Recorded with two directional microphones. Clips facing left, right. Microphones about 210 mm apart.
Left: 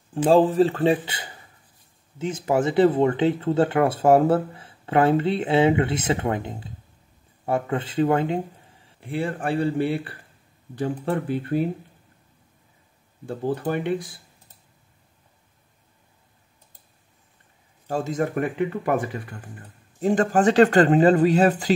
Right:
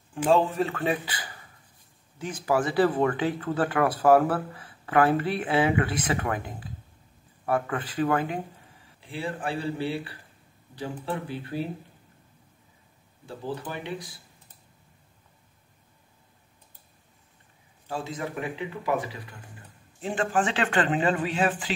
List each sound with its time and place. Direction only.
0.3 s speech: 35° left (ahead or behind)
9.0 s speech: 55° left (ahead or behind)
13.6 s speech: 55° left (ahead or behind)
17.8 s speech: 45° left (ahead or behind)